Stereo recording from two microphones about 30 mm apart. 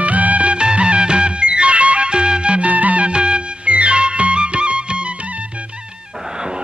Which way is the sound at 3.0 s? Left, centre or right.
Right.